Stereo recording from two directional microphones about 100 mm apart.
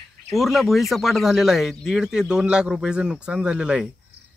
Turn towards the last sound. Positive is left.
turn(degrees=-10)  # may be behind; listen again after turning